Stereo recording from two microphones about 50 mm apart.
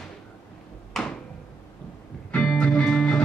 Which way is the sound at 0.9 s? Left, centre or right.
Centre.